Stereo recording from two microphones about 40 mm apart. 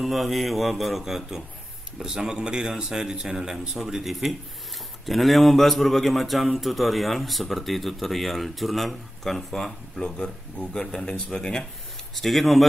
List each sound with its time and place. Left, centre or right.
0.0 s speech: centre; by 2.7 s right
2.7 s speech: centre
12.2 s speech: centre